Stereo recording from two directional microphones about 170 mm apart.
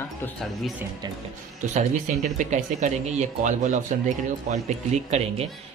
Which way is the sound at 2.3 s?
45° right (ahead or behind).